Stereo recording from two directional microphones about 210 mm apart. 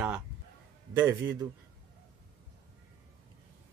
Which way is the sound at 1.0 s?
15° right (ahead or behind).